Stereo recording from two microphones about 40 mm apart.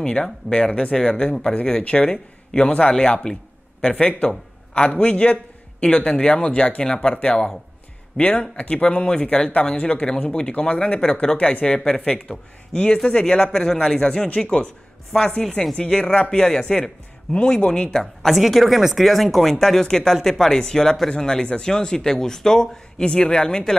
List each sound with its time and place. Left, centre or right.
0.0 s a man's voice: left
11.3 s speech: left
11.6 s a man's voice: left
17.9 s speech: centre; by 23.6 s left